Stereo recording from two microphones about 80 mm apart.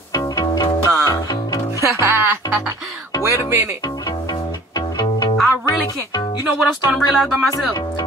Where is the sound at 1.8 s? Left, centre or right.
Right.